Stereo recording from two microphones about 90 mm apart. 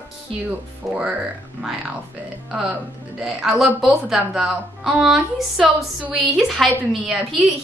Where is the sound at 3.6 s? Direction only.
Centre (ahead or behind).